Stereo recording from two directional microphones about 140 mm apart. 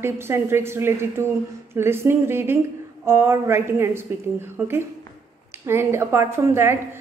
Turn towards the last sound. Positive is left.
turn(degrees=-20)  # may be behind; listen again after turning